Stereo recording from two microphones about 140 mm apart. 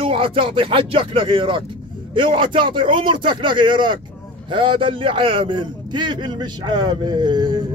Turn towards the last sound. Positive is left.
turn(degrees=-30)  # may be behind; listen again after turning